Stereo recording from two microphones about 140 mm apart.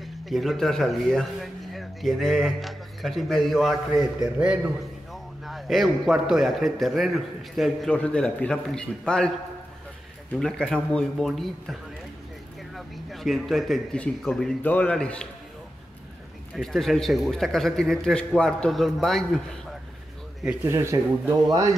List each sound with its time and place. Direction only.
0.0 s a man's voice: centre (ahead or behind)
10.4 s a man's voice: 5° left (ahead or behind)
12.7 s a man's voice: centre (ahead or behind)
16.5 s a man's voice: centre (ahead or behind)
20.4 s speech: 15° right (ahead or behind)